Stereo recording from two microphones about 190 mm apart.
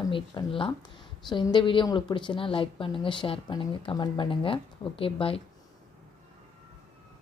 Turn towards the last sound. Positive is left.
turn(degrees=30)  # may be behind; listen again after turning